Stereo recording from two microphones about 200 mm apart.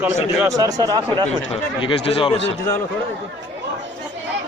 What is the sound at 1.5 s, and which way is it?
Speech, 30° left (ahead or behind).